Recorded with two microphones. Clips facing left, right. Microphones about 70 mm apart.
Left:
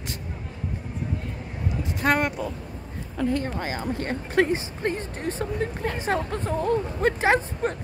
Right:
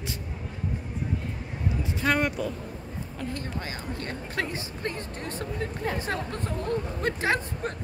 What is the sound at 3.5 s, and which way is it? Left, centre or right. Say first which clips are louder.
Speech: left 6 dB; left.